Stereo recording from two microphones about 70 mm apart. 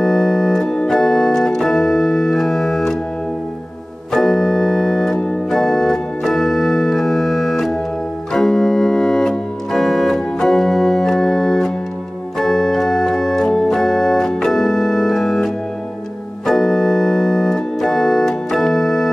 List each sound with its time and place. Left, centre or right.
0.0 s organ: centre
4.1 s organ: centre